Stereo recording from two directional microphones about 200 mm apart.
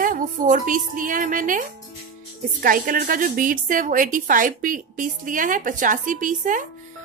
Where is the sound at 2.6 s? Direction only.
45° right (ahead or behind).